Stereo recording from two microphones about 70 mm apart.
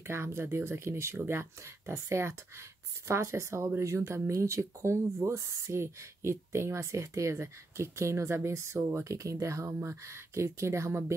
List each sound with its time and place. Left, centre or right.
0.0 s speech: right